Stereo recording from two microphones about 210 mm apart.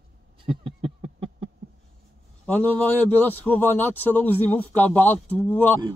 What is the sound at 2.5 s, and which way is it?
Speech, 5° left (ahead or behind).